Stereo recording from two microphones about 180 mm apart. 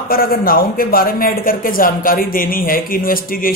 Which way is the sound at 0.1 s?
55° left (ahead or behind).